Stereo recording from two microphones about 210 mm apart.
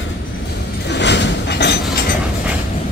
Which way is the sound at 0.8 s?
55° left (ahead or behind).